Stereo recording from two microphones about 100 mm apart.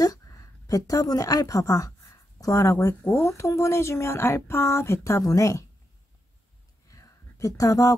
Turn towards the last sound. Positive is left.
turn(degrees=35)  # may be behind; listen again after turning